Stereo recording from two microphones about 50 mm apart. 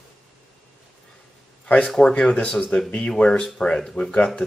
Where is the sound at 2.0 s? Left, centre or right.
Centre.